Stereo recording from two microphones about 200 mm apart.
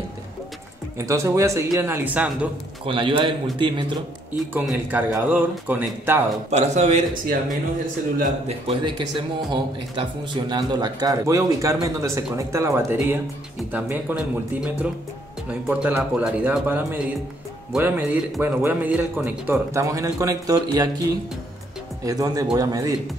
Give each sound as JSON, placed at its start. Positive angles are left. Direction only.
{"t": 0.9, "sound": "speech", "side_deg": -15}
{"t": 2.8, "sound": "a man's voice", "side_deg": -25}
{"t": 4.6, "sound": "speech", "side_deg": -10}
{"t": 6.5, "sound": "a man's voice", "side_deg": -35}
{"t": 22.0, "sound": "speech", "side_deg": -15}